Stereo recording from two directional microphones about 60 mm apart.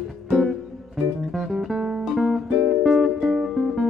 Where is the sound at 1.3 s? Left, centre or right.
Centre.